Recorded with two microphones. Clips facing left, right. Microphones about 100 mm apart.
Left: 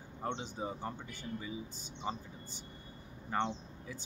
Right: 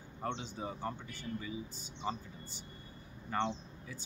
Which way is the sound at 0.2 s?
25° left (ahead or behind).